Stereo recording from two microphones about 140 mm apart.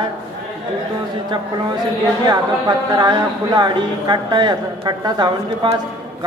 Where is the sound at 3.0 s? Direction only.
30° right (ahead or behind).